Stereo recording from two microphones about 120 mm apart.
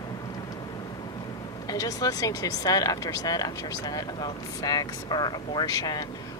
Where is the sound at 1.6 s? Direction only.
30° left (ahead or behind).